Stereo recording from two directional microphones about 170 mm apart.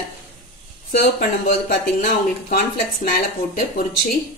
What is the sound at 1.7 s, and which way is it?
Speech, 60° left (ahead or behind).